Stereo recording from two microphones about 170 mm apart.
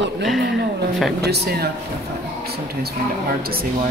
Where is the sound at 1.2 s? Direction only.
70° right (ahead or behind).